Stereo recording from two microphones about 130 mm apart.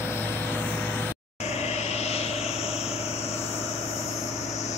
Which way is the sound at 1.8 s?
55° left (ahead or behind).